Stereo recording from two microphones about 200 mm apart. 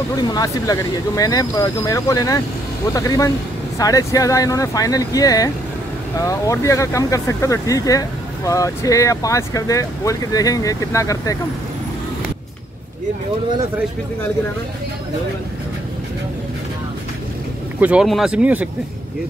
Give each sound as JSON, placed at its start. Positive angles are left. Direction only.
{"t": 0.3, "sound": "speech", "side_deg": 20}
{"t": 17.7, "sound": "speech", "side_deg": -5}